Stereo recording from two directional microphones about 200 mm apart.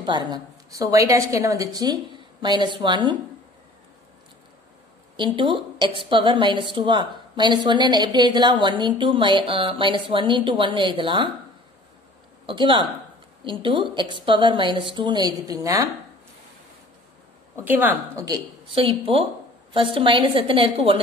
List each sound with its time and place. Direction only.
0.0 s a woman's voice: 20° right (ahead or behind)
5.1 s a woman's voice: 25° right (ahead or behind)
12.4 s a woman's voice: 25° right (ahead or behind)
17.6 s a woman's voice: 10° right (ahead or behind); by 21.0 s 25° right (ahead or behind)